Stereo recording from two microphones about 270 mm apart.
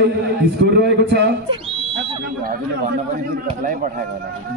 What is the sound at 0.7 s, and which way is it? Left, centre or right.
Speech, right.